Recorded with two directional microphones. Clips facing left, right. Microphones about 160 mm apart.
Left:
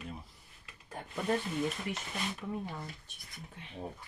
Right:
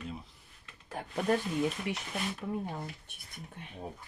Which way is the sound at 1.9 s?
85° right.